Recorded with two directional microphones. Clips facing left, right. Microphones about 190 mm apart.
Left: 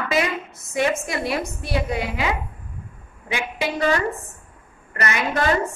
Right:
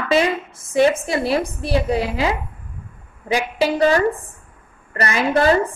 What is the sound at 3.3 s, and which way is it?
A woman's voice, 35° right (ahead or behind).